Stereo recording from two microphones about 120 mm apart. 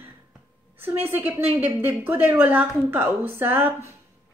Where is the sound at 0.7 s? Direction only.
15° right (ahead or behind).